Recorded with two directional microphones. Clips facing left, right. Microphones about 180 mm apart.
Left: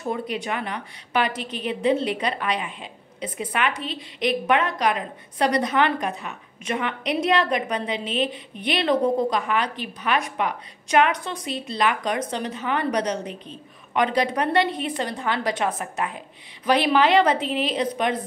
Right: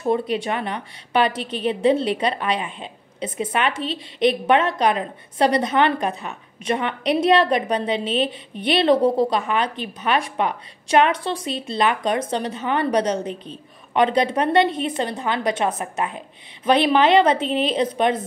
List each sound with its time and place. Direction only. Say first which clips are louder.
0.1 s a woman's voice: right 6 dB; 30° right (ahead or behind)